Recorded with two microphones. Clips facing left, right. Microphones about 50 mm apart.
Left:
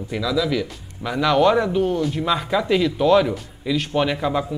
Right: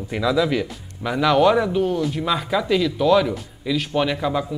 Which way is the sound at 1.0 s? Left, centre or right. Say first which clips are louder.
Right 1 dB; centre.